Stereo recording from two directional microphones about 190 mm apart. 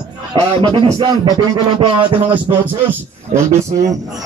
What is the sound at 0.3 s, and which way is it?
A man's voice, 25° right (ahead or behind).